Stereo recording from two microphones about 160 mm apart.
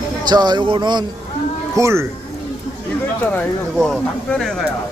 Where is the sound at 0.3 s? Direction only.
25° right (ahead or behind).